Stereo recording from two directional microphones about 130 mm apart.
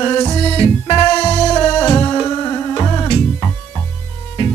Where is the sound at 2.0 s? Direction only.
25° left (ahead or behind).